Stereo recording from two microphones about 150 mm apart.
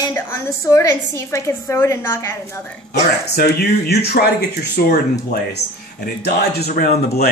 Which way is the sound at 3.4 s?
90° left.